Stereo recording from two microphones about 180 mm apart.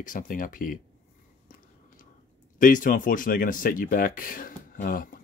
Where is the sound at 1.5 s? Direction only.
50° left (ahead or behind).